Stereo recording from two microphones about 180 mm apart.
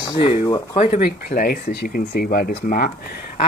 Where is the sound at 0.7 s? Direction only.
35° left (ahead or behind).